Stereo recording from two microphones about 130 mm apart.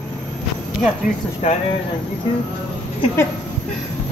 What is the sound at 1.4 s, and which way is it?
Speech, 55° left (ahead or behind).